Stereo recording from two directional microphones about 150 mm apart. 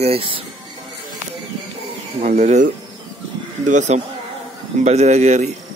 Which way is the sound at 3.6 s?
55° right (ahead or behind).